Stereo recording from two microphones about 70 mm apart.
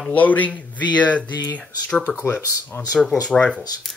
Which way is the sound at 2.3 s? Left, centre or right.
Left.